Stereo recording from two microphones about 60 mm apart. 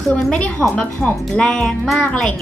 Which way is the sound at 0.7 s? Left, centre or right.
Centre.